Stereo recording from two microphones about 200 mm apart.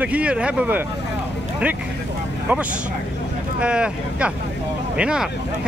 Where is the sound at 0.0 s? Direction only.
5° right (ahead or behind).